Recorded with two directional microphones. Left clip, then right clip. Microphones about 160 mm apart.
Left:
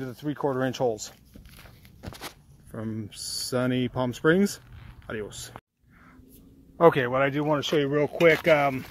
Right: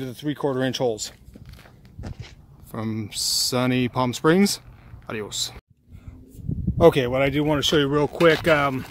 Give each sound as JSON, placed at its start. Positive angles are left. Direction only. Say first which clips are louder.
{"t": 0.0, "sound": "speech", "louder": "right 3 dB", "side_deg": 5}
{"t": 2.7, "sound": "speech", "louder": "right 6 dB", "side_deg": -10}
{"t": 6.8, "sound": "speech", "louder": "right 3 dB", "side_deg": -15}